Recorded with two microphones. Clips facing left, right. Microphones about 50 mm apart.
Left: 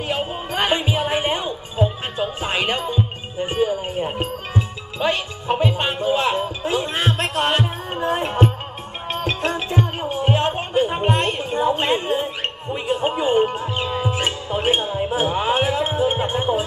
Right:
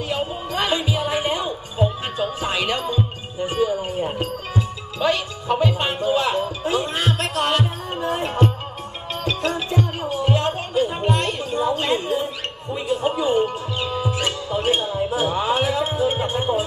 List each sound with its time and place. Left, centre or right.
0.0 s music: left